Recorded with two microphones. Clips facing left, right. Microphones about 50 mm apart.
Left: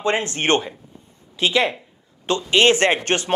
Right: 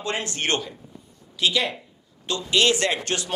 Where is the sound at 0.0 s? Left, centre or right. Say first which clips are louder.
Left 6 dB; left.